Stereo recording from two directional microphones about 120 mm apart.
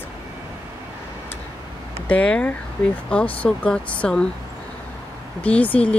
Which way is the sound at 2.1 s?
10° left (ahead or behind).